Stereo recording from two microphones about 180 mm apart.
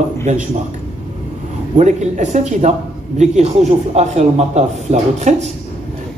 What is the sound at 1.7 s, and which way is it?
A man's voice, 40° right (ahead or behind).